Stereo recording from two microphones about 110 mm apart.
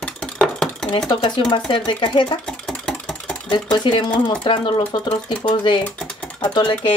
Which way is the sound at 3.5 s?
45° left (ahead or behind).